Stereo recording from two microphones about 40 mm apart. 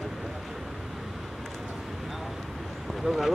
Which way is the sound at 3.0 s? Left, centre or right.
Centre.